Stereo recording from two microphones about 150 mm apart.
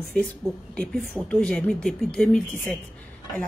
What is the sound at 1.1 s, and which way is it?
Speech, 5° left (ahead or behind).